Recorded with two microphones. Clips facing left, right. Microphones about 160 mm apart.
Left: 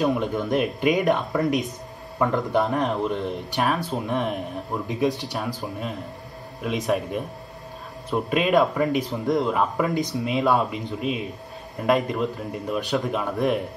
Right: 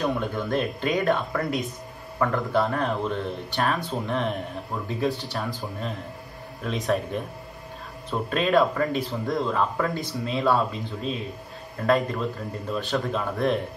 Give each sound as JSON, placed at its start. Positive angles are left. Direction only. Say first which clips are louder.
{"t": 0.0, "sound": "speech", "louder": "left 3 dB", "side_deg": 15}
{"t": 4.8, "sound": "speech", "louder": "left 2 dB", "side_deg": 15}
{"t": 8.1, "sound": "speech", "louder": "left 2 dB", "side_deg": 15}